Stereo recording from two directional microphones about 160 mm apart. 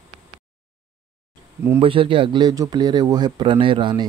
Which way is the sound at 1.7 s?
35° right (ahead or behind).